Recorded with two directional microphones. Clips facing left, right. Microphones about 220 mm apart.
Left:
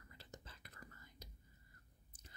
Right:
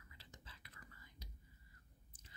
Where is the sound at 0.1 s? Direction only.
45° left (ahead or behind).